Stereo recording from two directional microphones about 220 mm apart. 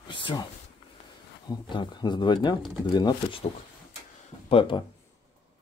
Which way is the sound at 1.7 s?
20° left (ahead or behind).